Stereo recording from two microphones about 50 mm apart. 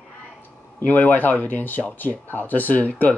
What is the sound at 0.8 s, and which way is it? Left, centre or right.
Speech, left.